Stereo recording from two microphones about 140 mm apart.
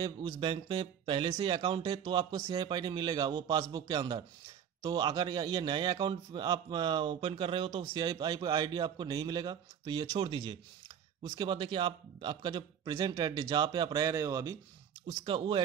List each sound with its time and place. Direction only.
0.0 s a man's voice: 35° right (ahead or behind)
15.0 s a man's voice: 35° right (ahead or behind)